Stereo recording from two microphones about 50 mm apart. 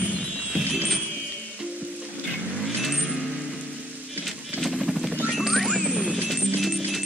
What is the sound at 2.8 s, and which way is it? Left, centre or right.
Vehicle, centre.